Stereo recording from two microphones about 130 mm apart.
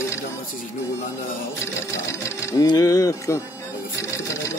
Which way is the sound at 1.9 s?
20° left (ahead or behind).